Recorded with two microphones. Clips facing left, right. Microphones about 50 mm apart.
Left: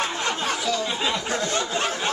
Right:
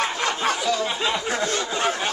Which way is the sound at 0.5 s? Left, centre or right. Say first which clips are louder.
Right 2 dB; centre.